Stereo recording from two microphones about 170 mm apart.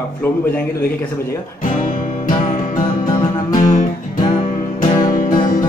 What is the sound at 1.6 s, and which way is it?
Music, 50° left (ahead or behind).